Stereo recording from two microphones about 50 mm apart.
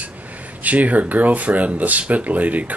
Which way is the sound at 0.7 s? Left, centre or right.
Right.